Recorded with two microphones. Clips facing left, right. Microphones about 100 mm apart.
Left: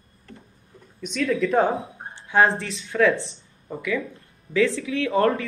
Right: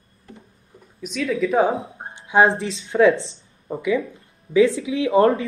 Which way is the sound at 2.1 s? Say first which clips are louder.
Right 3 dB; 15° right (ahead or behind).